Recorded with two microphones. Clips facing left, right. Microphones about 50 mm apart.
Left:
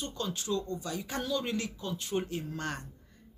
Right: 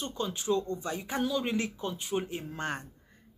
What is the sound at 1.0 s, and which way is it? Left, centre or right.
Speech, centre.